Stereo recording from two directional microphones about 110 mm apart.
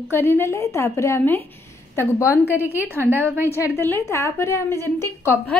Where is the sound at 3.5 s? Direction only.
25° left (ahead or behind).